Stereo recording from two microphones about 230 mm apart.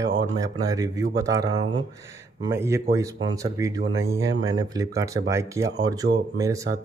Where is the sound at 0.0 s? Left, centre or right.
Right.